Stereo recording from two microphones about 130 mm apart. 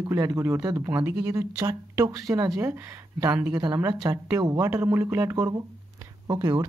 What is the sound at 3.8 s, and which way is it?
Speech, 25° right (ahead or behind).